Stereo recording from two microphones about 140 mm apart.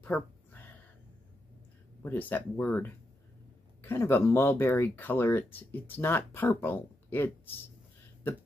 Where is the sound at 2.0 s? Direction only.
15° left (ahead or behind).